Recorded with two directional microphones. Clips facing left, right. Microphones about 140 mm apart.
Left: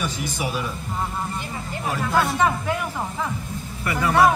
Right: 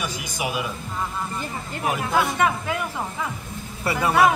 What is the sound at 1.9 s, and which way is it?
Speech, 15° right (ahead or behind).